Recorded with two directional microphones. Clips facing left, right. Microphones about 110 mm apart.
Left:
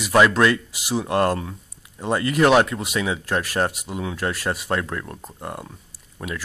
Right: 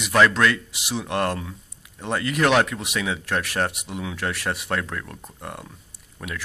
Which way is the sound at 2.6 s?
Centre (ahead or behind).